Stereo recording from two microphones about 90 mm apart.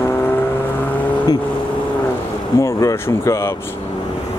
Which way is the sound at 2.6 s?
35° left (ahead or behind).